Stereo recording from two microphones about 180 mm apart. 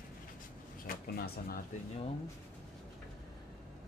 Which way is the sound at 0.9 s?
55° left (ahead or behind).